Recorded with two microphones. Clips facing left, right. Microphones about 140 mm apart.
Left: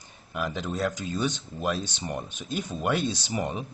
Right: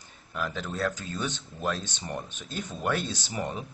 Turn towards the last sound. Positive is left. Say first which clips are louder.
# left 3 dB
turn(degrees=15)  # may be behind; listen again after turning